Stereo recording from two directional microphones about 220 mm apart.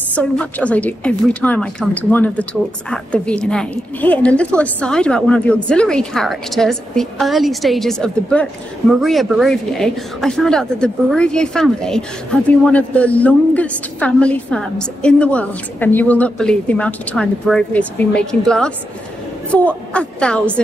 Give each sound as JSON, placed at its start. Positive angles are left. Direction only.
{"t": 0.1, "sound": "a woman's voice", "side_deg": 5}